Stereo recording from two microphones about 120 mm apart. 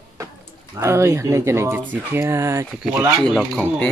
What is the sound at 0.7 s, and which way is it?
Speech, 20° right (ahead or behind).